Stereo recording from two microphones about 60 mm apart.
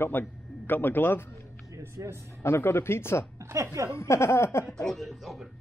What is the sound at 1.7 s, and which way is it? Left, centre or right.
Speech, right.